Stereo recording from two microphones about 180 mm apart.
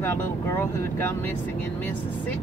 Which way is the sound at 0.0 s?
15° left (ahead or behind).